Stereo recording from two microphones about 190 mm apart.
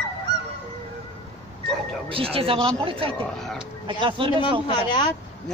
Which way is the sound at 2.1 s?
30° right (ahead or behind).